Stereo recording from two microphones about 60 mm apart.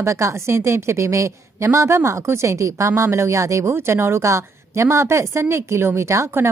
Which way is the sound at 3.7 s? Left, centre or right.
Right.